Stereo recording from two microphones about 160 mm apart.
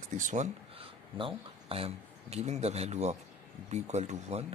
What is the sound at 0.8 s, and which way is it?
Speech, 35° right (ahead or behind).